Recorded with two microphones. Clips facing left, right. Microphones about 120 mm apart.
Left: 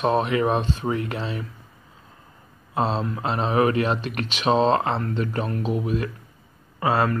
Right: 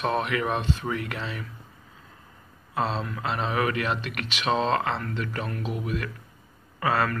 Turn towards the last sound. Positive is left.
turn(degrees=25)  # may be behind; listen again after turning